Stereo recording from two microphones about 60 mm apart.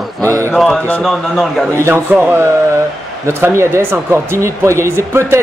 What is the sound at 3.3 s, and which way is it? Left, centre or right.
Speech, right.